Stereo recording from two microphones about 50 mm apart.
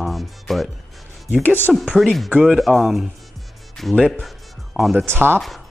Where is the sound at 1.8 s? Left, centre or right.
Centre.